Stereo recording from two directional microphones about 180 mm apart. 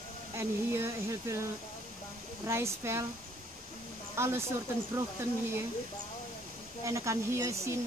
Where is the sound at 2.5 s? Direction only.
15° right (ahead or behind).